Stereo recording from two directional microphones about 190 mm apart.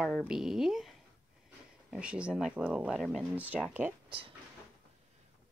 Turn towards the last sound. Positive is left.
turn(degrees=-25)  # may be behind; listen again after turning